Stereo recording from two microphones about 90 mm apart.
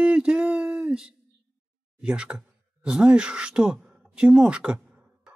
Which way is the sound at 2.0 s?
10° right (ahead or behind).